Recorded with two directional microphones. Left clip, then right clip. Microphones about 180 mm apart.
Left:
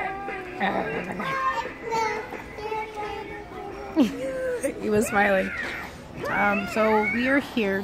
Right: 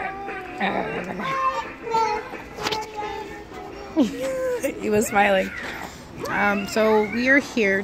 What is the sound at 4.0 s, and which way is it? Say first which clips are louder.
Speech: right 1 dB; 15° left (ahead or behind).